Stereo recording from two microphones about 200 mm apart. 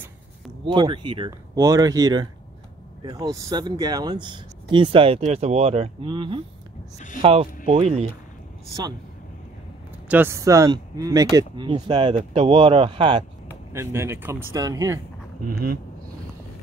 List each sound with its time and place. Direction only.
0.7 s speech: 25° right (ahead or behind)
10.0 s speech: 10° right (ahead or behind); by 13.2 s 25° right (ahead or behind)
13.7 s speech: 15° right (ahead or behind)